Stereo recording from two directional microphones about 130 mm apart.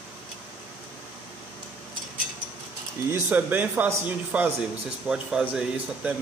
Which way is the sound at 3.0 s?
20° right (ahead or behind).